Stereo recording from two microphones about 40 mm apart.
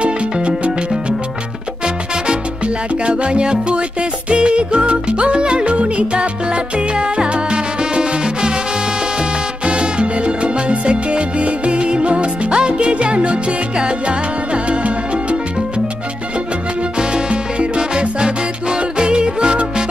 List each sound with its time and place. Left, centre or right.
3.1 s music: right
9.7 s music: right
17.1 s music: right